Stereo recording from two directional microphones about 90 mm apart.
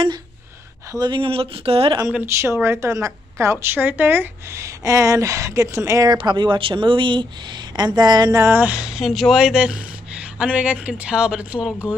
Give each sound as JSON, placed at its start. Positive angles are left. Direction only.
{"t": 0.9, "sound": "speech", "side_deg": -55}
{"t": 1.2, "sound": "speech", "side_deg": -90}
{"t": 2.2, "sound": "a woman's voice", "side_deg": -30}
{"t": 6.1, "sound": "speech", "side_deg": -60}
{"t": 8.4, "sound": "a woman's voice", "side_deg": -30}
{"t": 8.6, "sound": "a woman's voice", "side_deg": -10}